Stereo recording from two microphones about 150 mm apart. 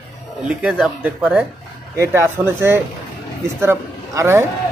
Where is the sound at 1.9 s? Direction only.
15° right (ahead or behind).